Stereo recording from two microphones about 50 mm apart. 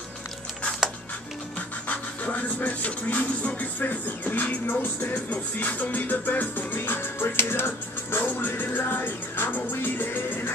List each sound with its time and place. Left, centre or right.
1.9 s music: left